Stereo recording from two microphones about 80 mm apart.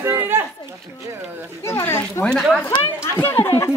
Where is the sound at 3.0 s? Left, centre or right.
Left.